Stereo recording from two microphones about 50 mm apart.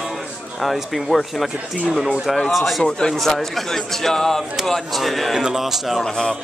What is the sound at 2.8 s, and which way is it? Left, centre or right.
Speech, centre.